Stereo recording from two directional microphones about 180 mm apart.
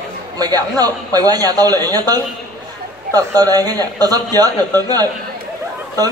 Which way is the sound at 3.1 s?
20° right (ahead or behind).